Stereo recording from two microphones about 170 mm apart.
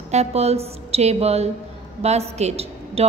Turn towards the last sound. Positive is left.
turn(degrees=-35)  # may be behind; listen again after turning